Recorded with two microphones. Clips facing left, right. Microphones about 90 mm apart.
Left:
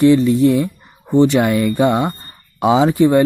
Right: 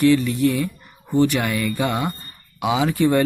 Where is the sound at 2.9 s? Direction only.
20° left (ahead or behind).